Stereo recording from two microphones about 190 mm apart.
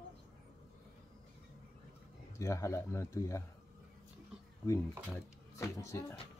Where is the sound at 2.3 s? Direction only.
15° left (ahead or behind).